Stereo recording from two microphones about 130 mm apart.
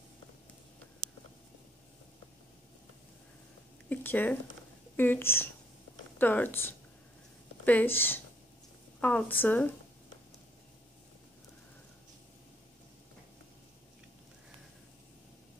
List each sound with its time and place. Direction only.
3.9 s speech: 15° left (ahead or behind)